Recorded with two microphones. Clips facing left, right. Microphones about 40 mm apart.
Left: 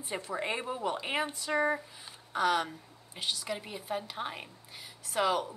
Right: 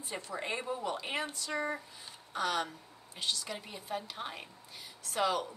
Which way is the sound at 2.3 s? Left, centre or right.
Centre.